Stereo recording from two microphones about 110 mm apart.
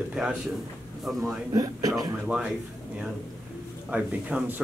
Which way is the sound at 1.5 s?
35° right (ahead or behind).